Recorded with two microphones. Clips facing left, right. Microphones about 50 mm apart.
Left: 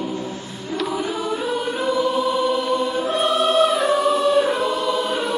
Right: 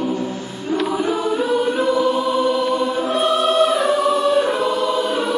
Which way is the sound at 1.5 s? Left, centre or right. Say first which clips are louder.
Right 5 dB; centre.